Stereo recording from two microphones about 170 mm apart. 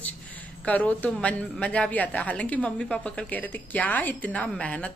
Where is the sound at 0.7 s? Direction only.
10° left (ahead or behind).